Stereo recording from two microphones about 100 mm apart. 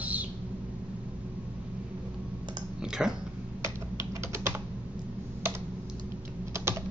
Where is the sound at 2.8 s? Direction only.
5° right (ahead or behind).